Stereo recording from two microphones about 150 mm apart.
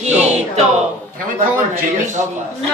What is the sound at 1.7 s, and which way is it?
Speech, 55° right (ahead or behind).